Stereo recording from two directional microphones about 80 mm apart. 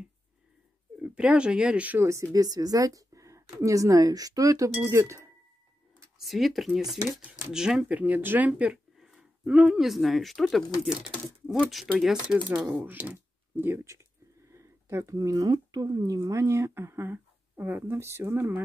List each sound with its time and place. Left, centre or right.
0.9 s speech: centre
2.0 s speech: right
6.1 s speech: centre
7.9 s speech: centre
8.9 s a sound: centre
9.8 s speech: centre
12.0 s speech: centre
12.6 s speech: right
13.0 s a sound: right
14.5 s speech: right
16.2 s speech: right